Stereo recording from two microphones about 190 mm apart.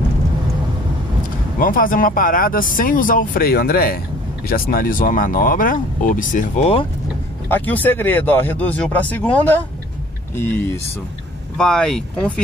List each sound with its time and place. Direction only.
1.6 s speech: 45° left (ahead or behind); by 6.9 s 30° left (ahead or behind)
7.4 s speech: 10° left (ahead or behind)
11.5 s speech: 5° left (ahead or behind)